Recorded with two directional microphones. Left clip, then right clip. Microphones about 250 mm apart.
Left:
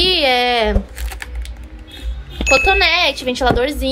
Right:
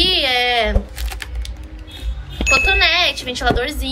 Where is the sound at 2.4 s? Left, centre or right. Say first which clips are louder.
Left 2 dB; centre.